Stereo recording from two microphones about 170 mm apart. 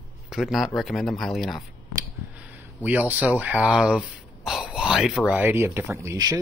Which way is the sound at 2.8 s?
10° right (ahead or behind).